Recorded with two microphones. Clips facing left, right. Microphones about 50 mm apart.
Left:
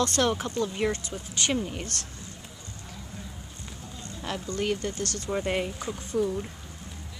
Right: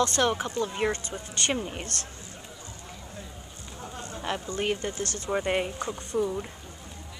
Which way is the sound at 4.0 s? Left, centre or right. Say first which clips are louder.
Right 2 dB; right.